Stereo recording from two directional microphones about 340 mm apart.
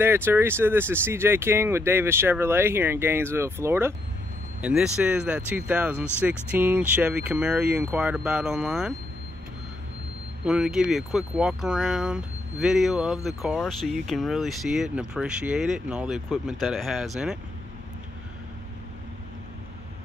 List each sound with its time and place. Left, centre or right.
0.0 s speech: centre
10.4 s speech: centre